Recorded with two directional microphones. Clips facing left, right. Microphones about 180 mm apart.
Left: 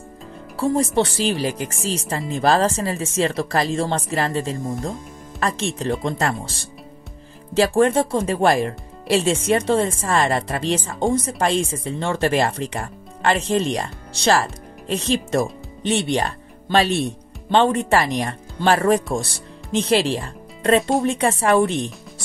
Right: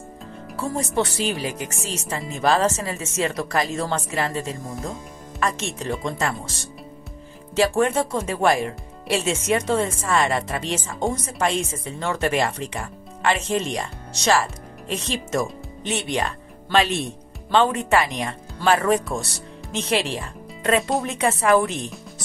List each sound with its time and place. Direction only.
0.6 s speech: 30° left (ahead or behind)